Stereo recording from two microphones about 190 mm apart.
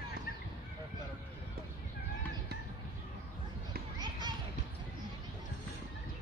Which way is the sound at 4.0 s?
20° right (ahead or behind).